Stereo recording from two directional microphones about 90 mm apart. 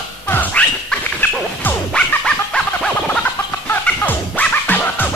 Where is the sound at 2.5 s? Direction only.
15° left (ahead or behind).